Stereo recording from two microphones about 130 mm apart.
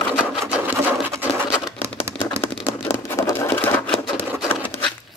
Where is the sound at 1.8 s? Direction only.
20° right (ahead or behind).